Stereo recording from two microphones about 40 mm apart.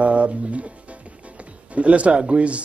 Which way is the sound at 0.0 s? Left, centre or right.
Right.